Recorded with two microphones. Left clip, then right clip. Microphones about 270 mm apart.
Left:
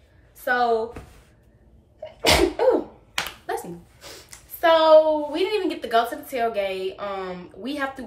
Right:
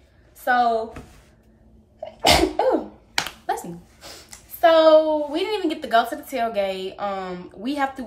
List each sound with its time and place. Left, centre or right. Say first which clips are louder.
0.4 s a woman's voice: right 2 dB; centre
2.2 s sneeze: right 1 dB; centre
3.5 s a sound: right 3 dB; centre
5.1 s speech: even; centre